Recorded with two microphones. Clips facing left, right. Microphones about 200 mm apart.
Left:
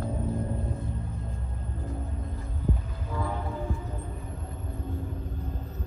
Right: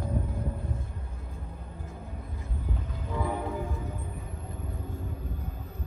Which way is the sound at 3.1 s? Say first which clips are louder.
Right 1 dB; 15° right (ahead or behind).